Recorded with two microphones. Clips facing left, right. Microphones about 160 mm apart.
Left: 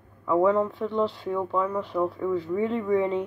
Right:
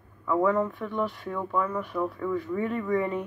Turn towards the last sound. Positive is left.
turn(degrees=20)  # may be behind; listen again after turning